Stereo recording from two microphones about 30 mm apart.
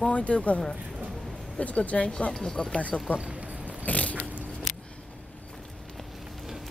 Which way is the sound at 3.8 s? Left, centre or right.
Left.